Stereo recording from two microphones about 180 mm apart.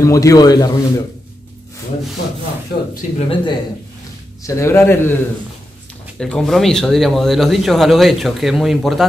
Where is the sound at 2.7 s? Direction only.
60° left (ahead or behind).